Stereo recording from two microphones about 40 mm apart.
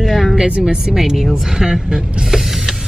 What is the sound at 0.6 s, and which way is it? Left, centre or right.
Speech, centre.